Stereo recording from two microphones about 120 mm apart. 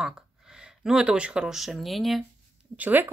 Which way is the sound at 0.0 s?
5° right (ahead or behind).